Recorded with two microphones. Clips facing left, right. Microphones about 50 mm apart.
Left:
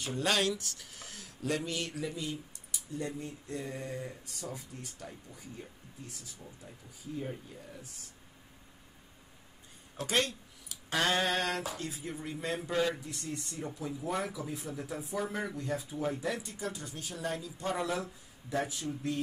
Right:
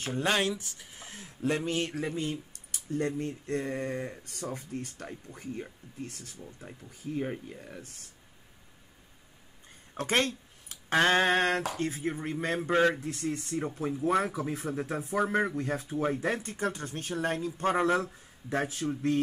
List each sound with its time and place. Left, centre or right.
0.0 s speech: right
9.9 s speech: right